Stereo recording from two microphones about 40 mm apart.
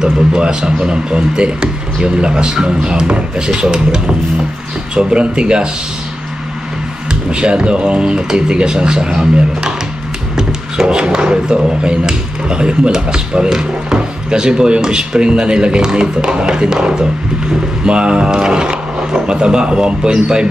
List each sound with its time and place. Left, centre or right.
0.0 s speech: right
7.1 s speech: right